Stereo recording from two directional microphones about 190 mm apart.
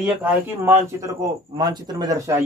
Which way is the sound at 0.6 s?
15° right (ahead or behind).